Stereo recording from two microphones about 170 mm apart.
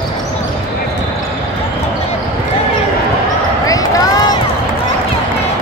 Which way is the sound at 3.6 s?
20° left (ahead or behind).